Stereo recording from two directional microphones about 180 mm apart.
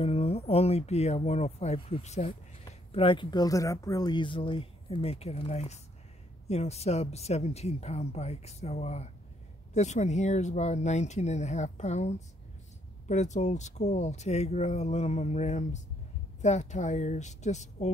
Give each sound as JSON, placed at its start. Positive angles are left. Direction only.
{"t": 0.0, "sound": "speech", "side_deg": 35}